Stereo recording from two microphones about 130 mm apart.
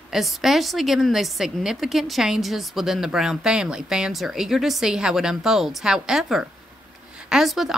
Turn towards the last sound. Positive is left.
turn(degrees=0)  # may be behind; listen again after turning